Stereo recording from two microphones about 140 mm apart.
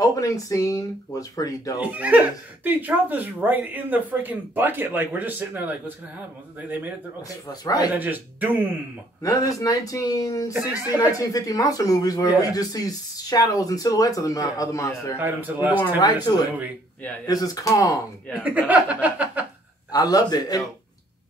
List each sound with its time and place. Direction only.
0.0 s speech: 25° left (ahead or behind)
1.8 s speech: 10° right (ahead or behind)
7.2 s speech: 25° left (ahead or behind)
7.9 s speech: 15° right (ahead or behind)
9.2 s speech: 25° left (ahead or behind)
15.1 s speech: 15° right (ahead or behind)
16.0 s speech: 30° left (ahead or behind)
18.4 s speech: 10° right (ahead or behind)
19.9 s speech: 25° left (ahead or behind)